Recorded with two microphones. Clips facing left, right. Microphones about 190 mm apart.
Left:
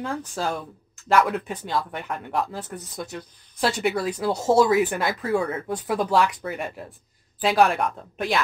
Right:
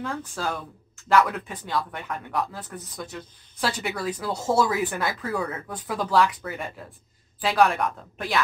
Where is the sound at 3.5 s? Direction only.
25° left (ahead or behind).